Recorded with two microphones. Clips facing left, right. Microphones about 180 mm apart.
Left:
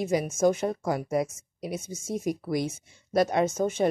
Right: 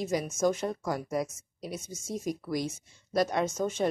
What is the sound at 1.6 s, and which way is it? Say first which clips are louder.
Speech: left 5 dB; 55° left (ahead or behind).